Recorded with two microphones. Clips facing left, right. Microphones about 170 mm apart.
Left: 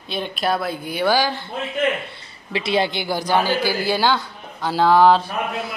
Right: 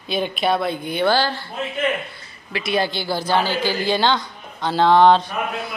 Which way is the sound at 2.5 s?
25° left (ahead or behind).